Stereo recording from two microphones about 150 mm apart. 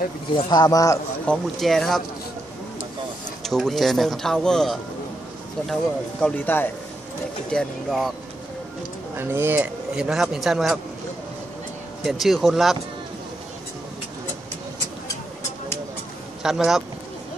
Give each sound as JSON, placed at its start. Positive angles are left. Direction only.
{"t": 0.3, "sound": "speech", "side_deg": 30}
{"t": 1.2, "sound": "speech", "side_deg": 5}
{"t": 3.4, "sound": "speech", "side_deg": 0}
{"t": 6.2, "sound": "speech", "side_deg": 10}
{"t": 7.5, "sound": "speech", "side_deg": 0}
{"t": 9.1, "sound": "speech", "side_deg": -15}
{"t": 12.0, "sound": "speech", "side_deg": 0}
{"t": 16.4, "sound": "speech", "side_deg": 0}